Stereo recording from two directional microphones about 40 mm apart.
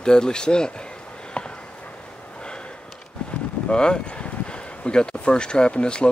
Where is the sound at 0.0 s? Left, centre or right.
Centre.